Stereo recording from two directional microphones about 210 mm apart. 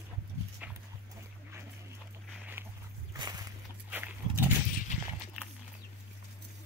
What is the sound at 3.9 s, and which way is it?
Wild animals, 10° right (ahead or behind).